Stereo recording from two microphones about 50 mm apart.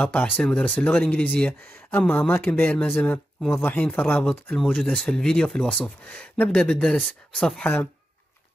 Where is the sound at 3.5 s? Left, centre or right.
Left.